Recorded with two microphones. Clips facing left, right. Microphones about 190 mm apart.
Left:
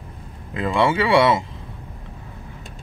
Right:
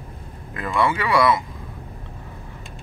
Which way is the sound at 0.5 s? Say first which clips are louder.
Left 3 dB; 25° left (ahead or behind).